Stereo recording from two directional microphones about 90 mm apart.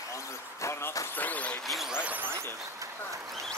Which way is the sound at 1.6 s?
Centre (ahead or behind).